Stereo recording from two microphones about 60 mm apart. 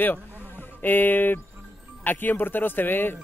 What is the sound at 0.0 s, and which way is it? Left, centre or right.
A man's voice, left.